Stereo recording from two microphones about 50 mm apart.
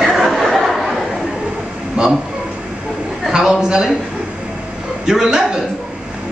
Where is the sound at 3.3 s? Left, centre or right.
Centre.